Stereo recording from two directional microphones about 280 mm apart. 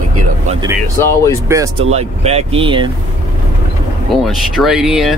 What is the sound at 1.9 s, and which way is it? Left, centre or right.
Speech, right.